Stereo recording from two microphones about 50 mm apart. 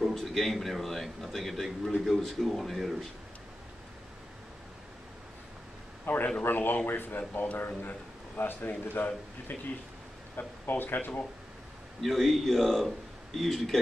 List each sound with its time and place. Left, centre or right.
0.1 s a man's voice: centre
6.0 s a man's voice: left
12.0 s a man's voice: centre